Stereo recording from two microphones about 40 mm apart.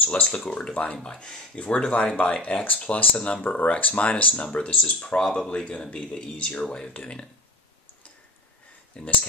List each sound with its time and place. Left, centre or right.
0.0 s speech: left
0.5 s speech: left
3.4 s speech: left
6.3 s speech: left
6.6 s speech: left
9.0 s speech: left